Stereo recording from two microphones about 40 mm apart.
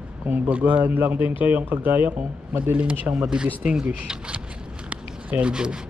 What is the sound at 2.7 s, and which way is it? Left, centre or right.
Speech, right.